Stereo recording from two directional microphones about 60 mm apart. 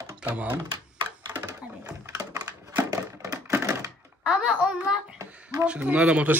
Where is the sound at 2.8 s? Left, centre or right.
Right.